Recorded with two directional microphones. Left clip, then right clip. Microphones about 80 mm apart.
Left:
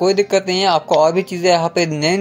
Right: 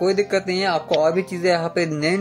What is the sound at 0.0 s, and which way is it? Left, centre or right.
A man's voice, left.